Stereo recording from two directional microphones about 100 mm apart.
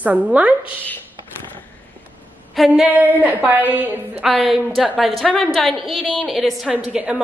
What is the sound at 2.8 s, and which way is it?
A woman's voice, 15° right (ahead or behind).